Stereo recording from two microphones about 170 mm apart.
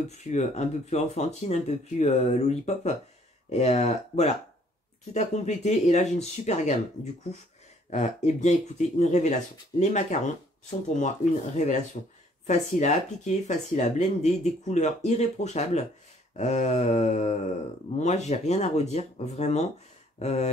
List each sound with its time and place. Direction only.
0.3 s speech: 45° left (ahead or behind)
7.9 s speech: 40° left (ahead or behind)
10.9 s speech: 45° left (ahead or behind)